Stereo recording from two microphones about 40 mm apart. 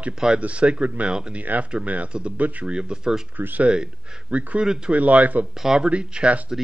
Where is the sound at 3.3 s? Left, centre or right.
Right.